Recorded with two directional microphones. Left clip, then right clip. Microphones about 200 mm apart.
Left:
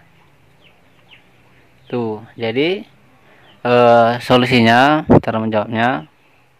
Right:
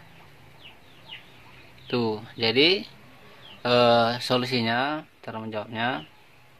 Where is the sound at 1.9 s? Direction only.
25° left (ahead or behind); by 6.0 s 50° left (ahead or behind).